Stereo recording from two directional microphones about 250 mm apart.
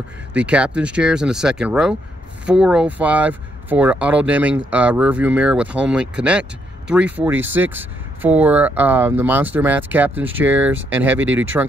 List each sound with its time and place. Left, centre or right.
0.3 s speech: centre
11.2 s speech: right